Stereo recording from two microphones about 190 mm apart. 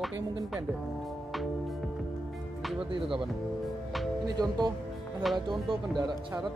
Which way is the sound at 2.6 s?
Centre (ahead or behind).